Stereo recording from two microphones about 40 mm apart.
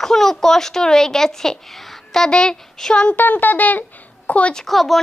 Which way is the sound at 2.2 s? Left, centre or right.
Centre.